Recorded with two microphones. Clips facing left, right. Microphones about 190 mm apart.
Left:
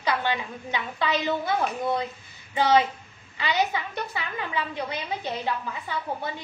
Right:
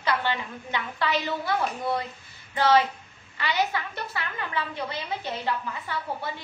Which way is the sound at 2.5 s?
15° left (ahead or behind).